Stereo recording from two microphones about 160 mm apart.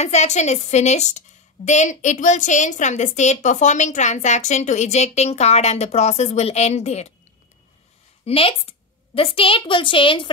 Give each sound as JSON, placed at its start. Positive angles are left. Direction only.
{"t": 0.0, "sound": "a woman's voice", "side_deg": 45}
{"t": 8.3, "sound": "a woman's voice", "side_deg": 35}